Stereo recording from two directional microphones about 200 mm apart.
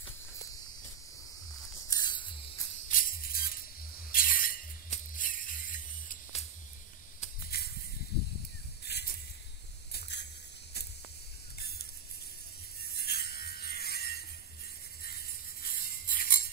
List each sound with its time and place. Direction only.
1.9 s a sound: 20° left (ahead or behind)
2.9 s music: 45° left (ahead or behind)
7.5 s snake: 50° left (ahead or behind)
8.8 s a sound: 55° left (ahead or behind)
12.8 s rub: 50° left (ahead or behind)
15.0 s music: 45° left (ahead or behind)